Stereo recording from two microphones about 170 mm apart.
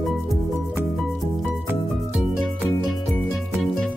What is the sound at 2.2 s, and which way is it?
Music, centre (ahead or behind).